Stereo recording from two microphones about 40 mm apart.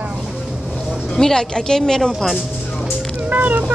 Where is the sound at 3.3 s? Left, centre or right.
Right.